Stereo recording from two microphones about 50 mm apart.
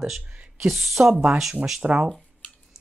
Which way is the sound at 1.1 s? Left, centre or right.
Centre.